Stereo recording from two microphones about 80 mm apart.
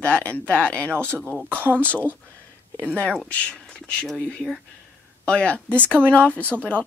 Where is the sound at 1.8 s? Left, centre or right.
Centre.